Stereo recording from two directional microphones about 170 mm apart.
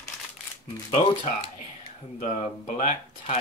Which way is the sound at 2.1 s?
50° left (ahead or behind).